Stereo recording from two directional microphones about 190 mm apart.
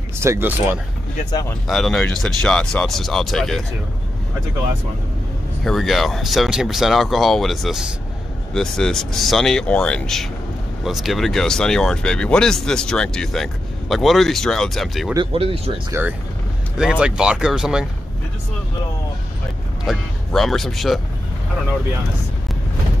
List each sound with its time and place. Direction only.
0.2 s speech: 15° right (ahead or behind)
1.7 s speech: centre (ahead or behind)
5.6 s speech: centre (ahead or behind)
15.1 s speech: 30° right (ahead or behind)
15.9 s speech: 10° right (ahead or behind)
19.8 s speech: centre (ahead or behind)